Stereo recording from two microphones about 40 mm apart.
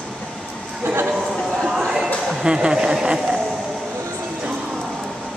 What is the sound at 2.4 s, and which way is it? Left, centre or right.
Speech, right.